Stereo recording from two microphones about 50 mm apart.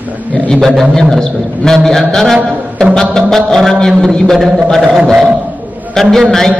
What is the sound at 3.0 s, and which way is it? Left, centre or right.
Mantra, centre.